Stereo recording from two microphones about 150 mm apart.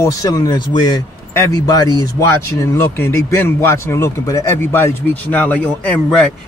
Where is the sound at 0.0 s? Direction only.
25° left (ahead or behind).